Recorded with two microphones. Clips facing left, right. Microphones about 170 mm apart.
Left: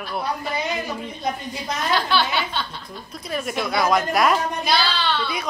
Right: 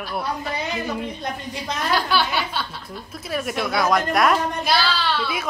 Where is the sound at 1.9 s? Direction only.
10° right (ahead or behind).